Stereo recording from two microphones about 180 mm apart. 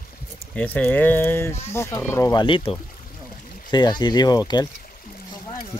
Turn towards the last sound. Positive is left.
turn(degrees=20)  # may be behind; listen again after turning